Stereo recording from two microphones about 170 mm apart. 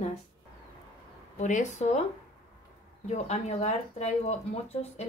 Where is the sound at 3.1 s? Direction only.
40° left (ahead or behind).